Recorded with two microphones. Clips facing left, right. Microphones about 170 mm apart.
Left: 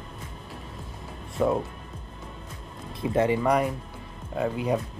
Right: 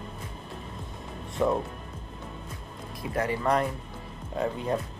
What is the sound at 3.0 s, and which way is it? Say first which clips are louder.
Speech: left 6 dB; 25° left (ahead or behind).